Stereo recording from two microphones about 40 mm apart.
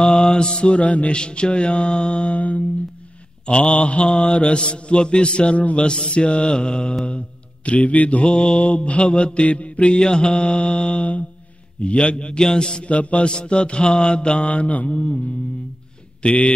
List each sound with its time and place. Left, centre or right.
0.0 s mantra: left
1.1 s mantra: left
3.7 s mantra: left
5.6 s mantra: left
5.9 s mantra: left
8.3 s mantra: left
9.9 s mantra: centre
12.4 s a man's voice: centre
12.8 s mantra: left
14.5 s mantra: left